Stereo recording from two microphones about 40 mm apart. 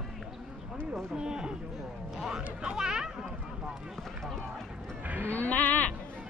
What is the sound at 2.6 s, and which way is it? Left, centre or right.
Speech, centre.